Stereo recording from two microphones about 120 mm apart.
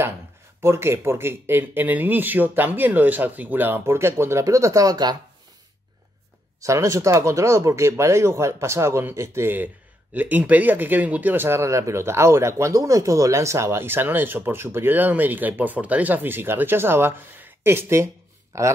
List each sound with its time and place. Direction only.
0.6 s speech: 20° right (ahead or behind)
6.6 s speech: 25° right (ahead or behind)